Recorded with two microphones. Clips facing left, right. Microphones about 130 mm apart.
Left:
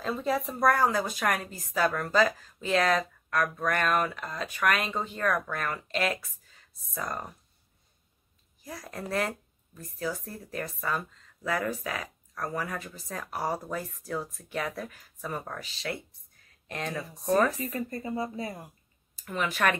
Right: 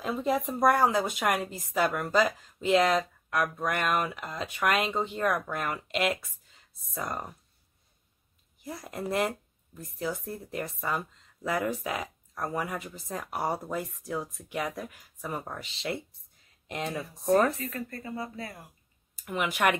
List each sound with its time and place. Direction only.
0.0 s speech: 15° right (ahead or behind)
8.6 s speech: 25° right (ahead or behind)
17.6 s a woman's voice: 20° left (ahead or behind)
19.2 s speech: 15° right (ahead or behind)